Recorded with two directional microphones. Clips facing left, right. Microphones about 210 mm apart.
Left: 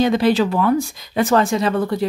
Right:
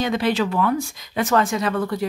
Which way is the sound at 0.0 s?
35° left (ahead or behind).